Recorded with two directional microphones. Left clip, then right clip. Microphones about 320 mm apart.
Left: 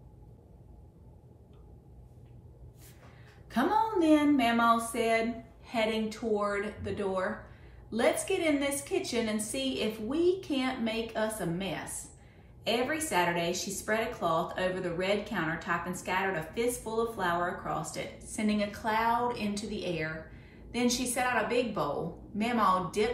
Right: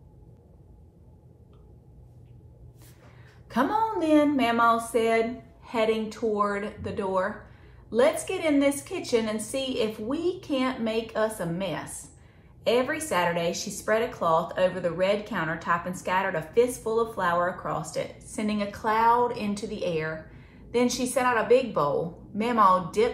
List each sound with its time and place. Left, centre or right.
3.4 s a woman's voice: centre